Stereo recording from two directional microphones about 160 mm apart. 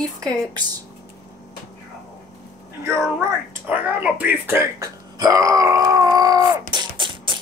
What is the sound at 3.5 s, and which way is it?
Speech, 10° right (ahead or behind).